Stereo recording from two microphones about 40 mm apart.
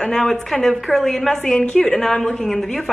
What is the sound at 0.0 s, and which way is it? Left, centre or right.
A woman's voice, centre.